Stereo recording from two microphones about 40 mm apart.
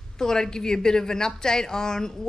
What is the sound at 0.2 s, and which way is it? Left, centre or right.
A woman's voice, centre.